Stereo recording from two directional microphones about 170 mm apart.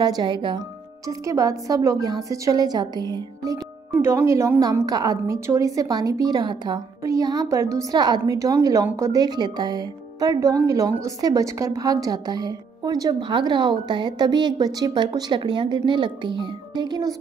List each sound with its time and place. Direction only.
0.0 s a woman's voice: 25° right (ahead or behind)